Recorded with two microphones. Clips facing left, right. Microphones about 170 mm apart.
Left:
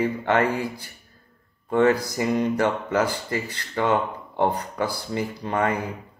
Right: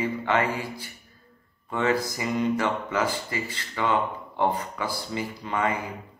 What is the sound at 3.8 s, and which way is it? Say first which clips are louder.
Speech: left 3 dB; 55° left (ahead or behind).